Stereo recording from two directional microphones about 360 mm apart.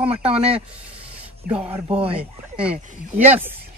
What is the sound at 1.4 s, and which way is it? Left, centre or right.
Speech, right.